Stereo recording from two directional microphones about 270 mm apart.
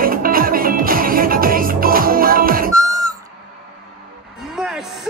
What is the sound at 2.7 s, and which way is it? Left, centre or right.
Owl, centre.